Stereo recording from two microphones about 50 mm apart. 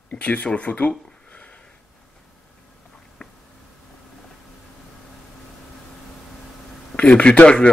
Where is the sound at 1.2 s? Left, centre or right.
Left.